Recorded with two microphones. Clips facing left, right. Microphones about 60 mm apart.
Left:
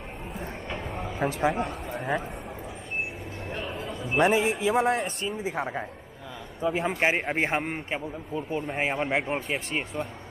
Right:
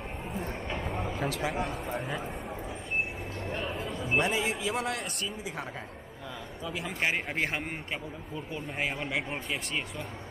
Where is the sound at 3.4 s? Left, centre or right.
Centre.